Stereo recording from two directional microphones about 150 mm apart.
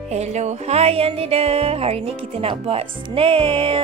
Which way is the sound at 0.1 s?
50° right (ahead or behind).